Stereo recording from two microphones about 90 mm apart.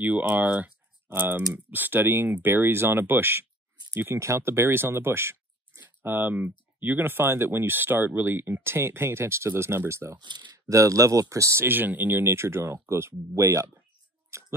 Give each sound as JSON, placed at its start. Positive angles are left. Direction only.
{"t": 0.0, "sound": "speech", "side_deg": -15}
{"t": 10.1, "sound": "speech", "side_deg": -55}
{"t": 10.7, "sound": "speech", "side_deg": -35}
{"t": 14.3, "sound": "scissors", "side_deg": -30}